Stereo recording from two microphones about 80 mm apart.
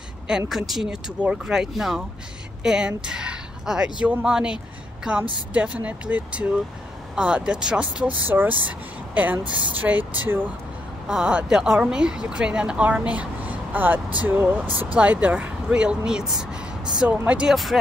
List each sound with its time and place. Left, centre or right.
0.5 s a woman's voice: centre
8.3 s speech: right
11.1 s a woman's voice: centre